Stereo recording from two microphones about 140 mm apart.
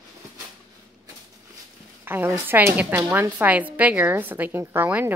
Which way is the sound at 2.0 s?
15° right (ahead or behind).